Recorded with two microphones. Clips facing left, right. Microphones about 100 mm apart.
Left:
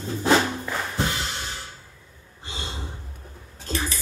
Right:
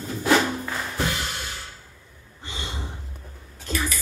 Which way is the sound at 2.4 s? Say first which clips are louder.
Even; 35° left (ahead or behind).